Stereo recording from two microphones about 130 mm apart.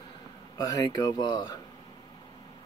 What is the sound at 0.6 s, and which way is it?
Speech, 30° left (ahead or behind).